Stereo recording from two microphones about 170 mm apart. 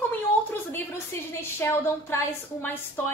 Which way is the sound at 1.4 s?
15° left (ahead or behind).